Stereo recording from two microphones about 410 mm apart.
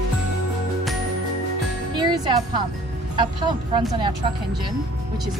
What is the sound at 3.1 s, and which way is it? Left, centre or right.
Speech, centre.